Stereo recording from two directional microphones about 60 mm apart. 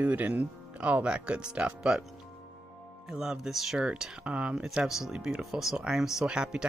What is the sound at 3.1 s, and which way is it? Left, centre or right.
Speech, centre.